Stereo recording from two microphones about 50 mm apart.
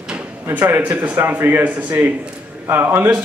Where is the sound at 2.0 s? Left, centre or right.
Right.